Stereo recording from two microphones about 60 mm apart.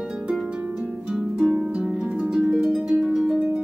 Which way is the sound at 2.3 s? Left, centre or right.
Centre.